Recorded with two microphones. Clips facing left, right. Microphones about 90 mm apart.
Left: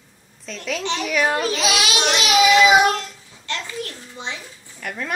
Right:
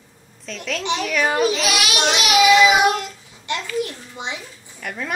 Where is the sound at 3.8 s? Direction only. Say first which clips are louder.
Right 4 dB; 15° right (ahead or behind).